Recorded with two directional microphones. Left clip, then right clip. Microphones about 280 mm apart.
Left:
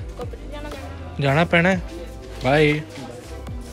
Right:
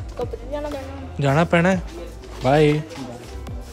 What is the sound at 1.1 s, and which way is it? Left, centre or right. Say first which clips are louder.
Speech: even; centre.